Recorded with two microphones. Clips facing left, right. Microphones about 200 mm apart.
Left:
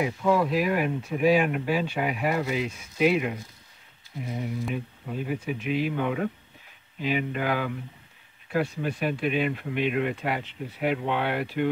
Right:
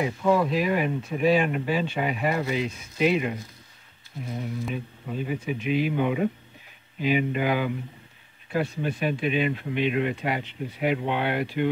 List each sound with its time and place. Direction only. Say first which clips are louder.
0.0 s speech: right 1 dB; 5° left (ahead or behind)